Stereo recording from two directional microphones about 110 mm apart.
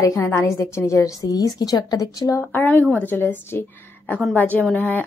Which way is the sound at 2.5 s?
15° left (ahead or behind).